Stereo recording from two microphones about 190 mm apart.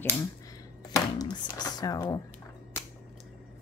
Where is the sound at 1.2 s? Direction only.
20° left (ahead or behind).